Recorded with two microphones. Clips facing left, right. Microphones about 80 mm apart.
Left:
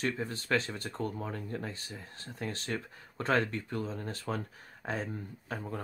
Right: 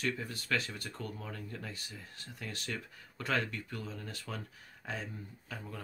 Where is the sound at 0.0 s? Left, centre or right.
Left.